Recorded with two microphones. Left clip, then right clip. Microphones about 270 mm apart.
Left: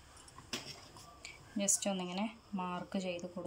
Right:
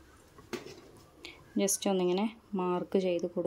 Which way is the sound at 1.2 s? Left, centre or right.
Centre.